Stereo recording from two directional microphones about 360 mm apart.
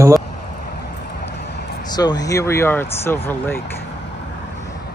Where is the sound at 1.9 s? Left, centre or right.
Centre.